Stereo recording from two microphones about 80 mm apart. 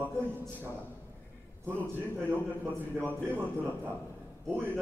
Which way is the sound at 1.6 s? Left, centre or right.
Right.